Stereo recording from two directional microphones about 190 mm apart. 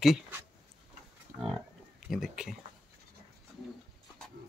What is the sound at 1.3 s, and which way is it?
Livestock, 40° right (ahead or behind).